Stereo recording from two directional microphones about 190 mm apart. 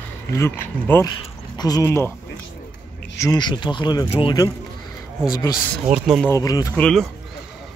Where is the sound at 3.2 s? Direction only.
20° left (ahead or behind).